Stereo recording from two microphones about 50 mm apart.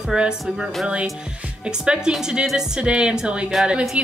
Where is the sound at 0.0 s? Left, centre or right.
Centre.